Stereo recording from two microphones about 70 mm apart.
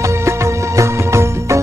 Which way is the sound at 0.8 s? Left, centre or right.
Right.